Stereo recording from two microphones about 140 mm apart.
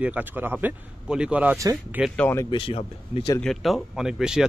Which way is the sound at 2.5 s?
40° left (ahead or behind).